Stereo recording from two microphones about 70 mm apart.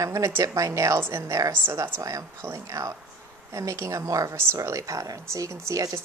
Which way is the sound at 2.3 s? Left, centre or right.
Right.